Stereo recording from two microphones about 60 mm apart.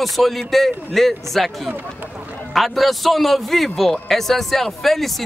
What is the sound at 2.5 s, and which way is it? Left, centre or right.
A man's voice, centre.